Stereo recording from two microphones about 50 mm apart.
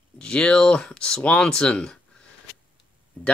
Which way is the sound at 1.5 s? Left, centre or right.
Centre.